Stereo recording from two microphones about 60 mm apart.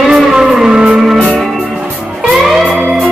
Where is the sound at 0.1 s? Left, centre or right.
Centre.